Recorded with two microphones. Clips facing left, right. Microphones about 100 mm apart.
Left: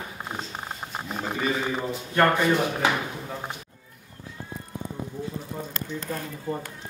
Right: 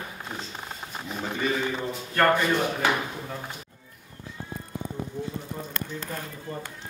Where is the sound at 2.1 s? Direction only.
10° left (ahead or behind).